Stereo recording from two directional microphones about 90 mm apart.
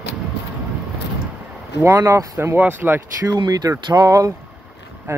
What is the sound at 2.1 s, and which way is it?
Speech, 30° right (ahead or behind).